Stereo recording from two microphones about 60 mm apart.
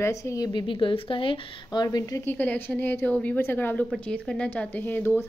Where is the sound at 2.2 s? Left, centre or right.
Left.